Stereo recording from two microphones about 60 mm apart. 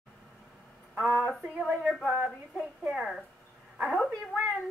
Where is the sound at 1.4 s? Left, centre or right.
Centre.